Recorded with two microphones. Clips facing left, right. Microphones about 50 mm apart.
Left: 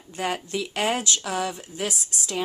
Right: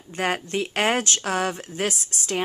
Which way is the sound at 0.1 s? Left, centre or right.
Right.